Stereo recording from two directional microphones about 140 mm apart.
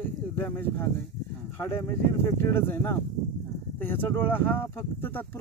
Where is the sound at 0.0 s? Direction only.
15° left (ahead or behind).